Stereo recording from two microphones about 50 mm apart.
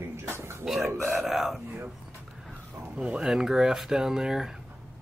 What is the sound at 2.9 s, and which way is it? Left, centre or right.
Speech, centre.